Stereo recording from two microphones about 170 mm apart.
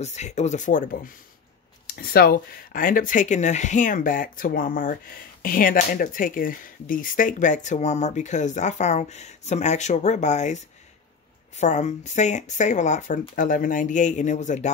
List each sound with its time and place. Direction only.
0.0 s speech: 40° left (ahead or behind)
2.0 s speech: 65° left (ahead or behind); by 14.7 s 45° left (ahead or behind)